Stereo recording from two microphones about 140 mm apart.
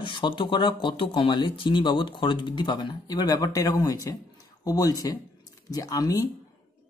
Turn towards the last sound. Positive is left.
turn(degrees=25)  # may be behind; listen again after turning